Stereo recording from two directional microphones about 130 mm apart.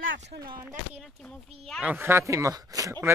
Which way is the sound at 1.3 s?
Centre (ahead or behind).